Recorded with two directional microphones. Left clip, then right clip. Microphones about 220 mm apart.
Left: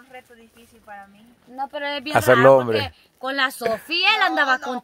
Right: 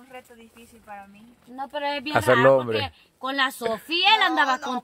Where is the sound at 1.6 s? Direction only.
20° left (ahead or behind).